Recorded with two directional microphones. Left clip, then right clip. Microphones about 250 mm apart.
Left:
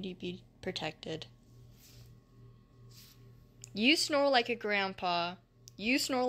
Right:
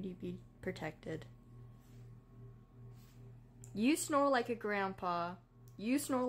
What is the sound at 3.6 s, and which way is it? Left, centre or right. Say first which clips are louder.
Speech: left 7 dB; centre.